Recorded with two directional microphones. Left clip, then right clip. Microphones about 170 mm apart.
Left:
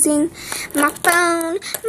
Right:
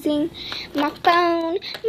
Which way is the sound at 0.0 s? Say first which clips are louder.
Left 4 dB; 10° left (ahead or behind).